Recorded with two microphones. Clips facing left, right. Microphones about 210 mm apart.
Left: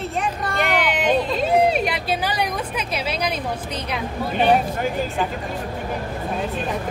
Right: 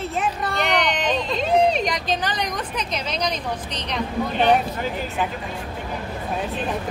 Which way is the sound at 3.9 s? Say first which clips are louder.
Right 2 dB; 5° left (ahead or behind).